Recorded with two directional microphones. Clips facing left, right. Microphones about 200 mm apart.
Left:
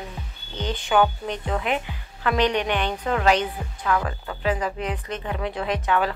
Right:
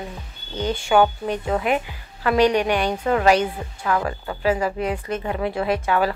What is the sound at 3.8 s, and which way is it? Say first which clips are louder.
Speech: right 2 dB; 25° right (ahead or behind).